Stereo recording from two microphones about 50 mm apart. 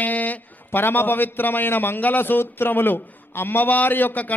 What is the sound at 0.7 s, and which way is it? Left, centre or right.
A man's voice, left.